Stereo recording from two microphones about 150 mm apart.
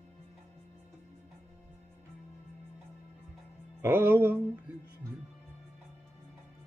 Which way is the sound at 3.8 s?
15° right (ahead or behind).